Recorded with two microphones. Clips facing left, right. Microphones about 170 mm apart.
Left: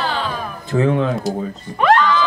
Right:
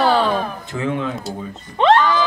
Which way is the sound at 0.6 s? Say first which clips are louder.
Left 6 dB; 35° left (ahead or behind).